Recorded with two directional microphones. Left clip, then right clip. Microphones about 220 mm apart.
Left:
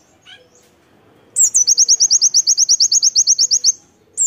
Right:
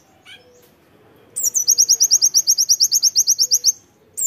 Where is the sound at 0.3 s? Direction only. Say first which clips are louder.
Left 1 dB; 45° right (ahead or behind).